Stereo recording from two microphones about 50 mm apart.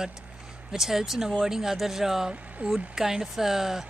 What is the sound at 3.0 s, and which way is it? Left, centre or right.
Speech, centre.